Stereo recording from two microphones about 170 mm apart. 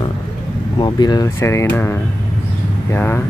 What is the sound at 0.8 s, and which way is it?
Speech, 25° left (ahead or behind).